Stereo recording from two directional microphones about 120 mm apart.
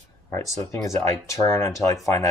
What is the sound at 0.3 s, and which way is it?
Speech, 25° left (ahead or behind).